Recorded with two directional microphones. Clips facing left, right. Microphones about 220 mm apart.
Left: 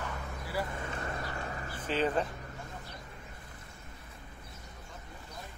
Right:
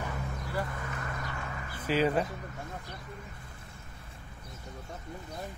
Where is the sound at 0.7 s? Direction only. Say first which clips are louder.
Left 1 dB; 30° left (ahead or behind).